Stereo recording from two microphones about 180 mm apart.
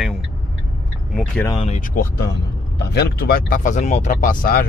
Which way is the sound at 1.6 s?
40° left (ahead or behind).